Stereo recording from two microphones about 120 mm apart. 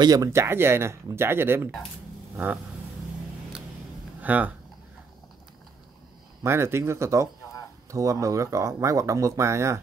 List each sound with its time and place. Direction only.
0.0 s speech: 30° right (ahead or behind); by 2.6 s 15° right (ahead or behind)
4.2 s speech: 15° right (ahead or behind)
6.4 s speech: 20° right (ahead or behind)